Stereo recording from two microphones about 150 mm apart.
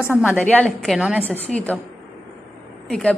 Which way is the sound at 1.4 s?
10° left (ahead or behind).